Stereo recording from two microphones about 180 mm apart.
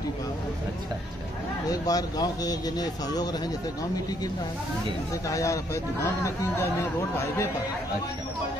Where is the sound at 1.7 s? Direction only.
20° left (ahead or behind).